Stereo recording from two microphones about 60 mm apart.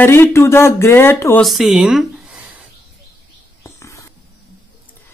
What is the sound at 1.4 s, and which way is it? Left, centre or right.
Speech, centre.